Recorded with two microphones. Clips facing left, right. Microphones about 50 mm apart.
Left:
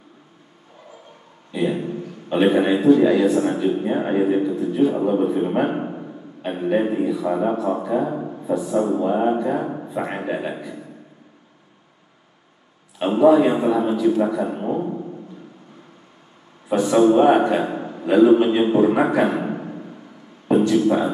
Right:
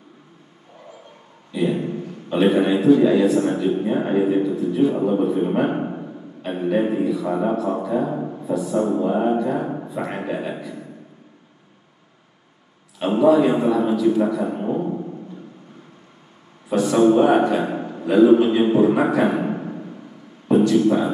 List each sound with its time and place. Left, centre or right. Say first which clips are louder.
1.5 s a man's voice: right 1 dB; centre
1.9 s a sound: right 1 dB; centre
2.2 s a man's voice: even; centre
5.9 s a sound: right 1 dB; centre
6.4 s a man's voice: even; centre
9.8 s a man's voice: left 1 dB; centre
13.2 s a man's voice: left 1 dB; centre
16.6 s a man's voice: even; left
16.9 s a man's voice: left 1 dB; centre
17.3 s a man's voice: left 1 dB; left
18.8 s a man's voice: left 1 dB; centre
19.4 s a sound: right 2 dB; centre
20.4 s a sound: right 1 dB; left
20.8 s a man's voice: even; left